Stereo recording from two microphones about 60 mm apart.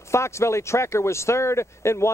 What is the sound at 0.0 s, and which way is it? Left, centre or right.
Speech, left.